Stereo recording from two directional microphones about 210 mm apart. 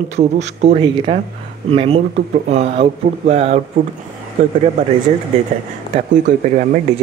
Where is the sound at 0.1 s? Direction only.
35° right (ahead or behind).